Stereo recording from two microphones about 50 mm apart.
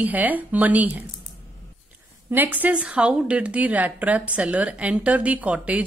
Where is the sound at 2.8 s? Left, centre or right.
Right.